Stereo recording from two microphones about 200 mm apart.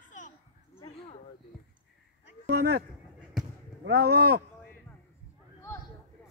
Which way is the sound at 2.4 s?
55° right (ahead or behind).